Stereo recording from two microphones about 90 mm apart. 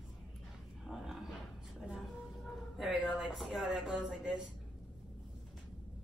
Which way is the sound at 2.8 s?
5° right (ahead or behind).